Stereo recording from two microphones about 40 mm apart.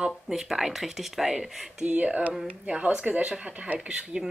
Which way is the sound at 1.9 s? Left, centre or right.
Right.